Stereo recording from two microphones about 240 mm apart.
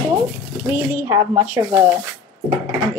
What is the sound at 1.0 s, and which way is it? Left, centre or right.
Speech, centre.